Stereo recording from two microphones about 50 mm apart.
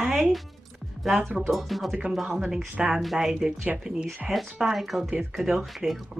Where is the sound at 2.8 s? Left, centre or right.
Centre.